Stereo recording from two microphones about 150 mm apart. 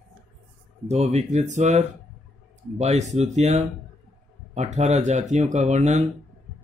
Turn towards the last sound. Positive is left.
turn(degrees=-50)  # may be behind; listen again after turning